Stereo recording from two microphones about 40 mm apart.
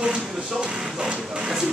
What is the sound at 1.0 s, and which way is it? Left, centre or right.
Speech, centre.